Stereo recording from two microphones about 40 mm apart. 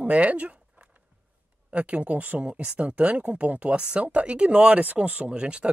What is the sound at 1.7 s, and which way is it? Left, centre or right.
Speech, right.